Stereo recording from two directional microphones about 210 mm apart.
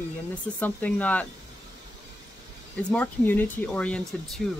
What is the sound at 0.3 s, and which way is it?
Speech, 10° left (ahead or behind).